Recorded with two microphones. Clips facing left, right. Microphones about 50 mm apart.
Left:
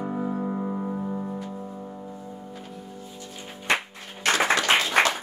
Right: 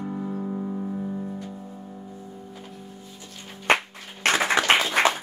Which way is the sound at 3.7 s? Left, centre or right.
Right.